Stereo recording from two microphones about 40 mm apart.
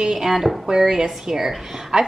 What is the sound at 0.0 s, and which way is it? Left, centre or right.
A woman's voice, centre.